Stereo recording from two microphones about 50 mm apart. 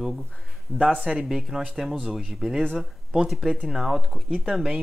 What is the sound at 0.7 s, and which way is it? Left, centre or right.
Speech, centre.